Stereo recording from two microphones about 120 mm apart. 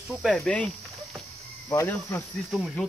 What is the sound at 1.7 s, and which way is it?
Speech, 25° left (ahead or behind).